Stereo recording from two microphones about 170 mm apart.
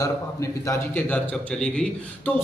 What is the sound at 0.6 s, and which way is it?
A man's voice, 15° left (ahead or behind).